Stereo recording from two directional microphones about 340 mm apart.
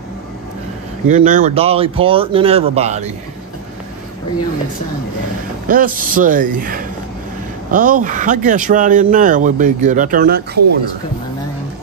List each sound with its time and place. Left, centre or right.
1.0 s speech: right
5.7 s speech: right